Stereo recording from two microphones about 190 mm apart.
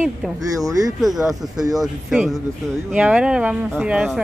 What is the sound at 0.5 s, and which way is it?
Speech, 20° right (ahead or behind).